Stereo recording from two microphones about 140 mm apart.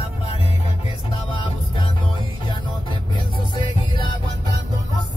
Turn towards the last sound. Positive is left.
turn(degrees=35)  # may be behind; listen again after turning